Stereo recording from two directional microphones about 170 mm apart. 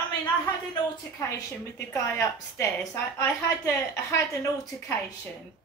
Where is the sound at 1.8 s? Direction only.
10° left (ahead or behind).